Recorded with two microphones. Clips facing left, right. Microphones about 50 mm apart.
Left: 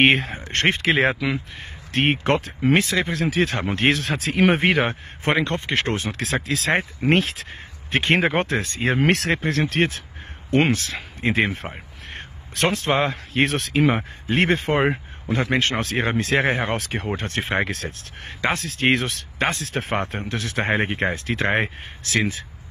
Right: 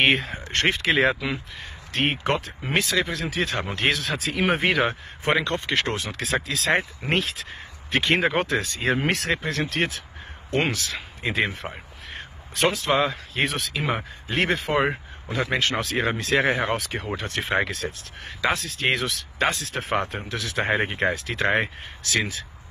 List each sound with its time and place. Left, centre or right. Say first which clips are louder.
0.0 s speech: left 3 dB; left
9.0 s speech: left 4 dB; left
9.4 s speech: left 4 dB; left
15.8 s speech: left 2 dB; left
16.7 s speech: left 2 dB; left
17.2 s speech: right 1 dB; left
17.6 s speech: left 1 dB; left
18.2 s speech: left 1 dB; left